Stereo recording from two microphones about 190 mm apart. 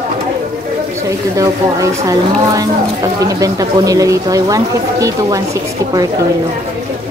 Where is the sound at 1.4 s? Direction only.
15° right (ahead or behind).